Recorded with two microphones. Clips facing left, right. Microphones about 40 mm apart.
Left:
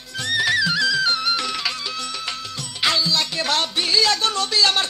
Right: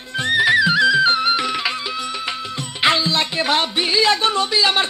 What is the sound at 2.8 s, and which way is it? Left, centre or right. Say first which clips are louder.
Music: right 3 dB; right.